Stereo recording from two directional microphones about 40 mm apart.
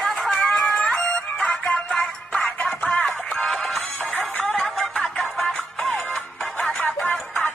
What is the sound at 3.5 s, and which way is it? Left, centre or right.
Music, centre.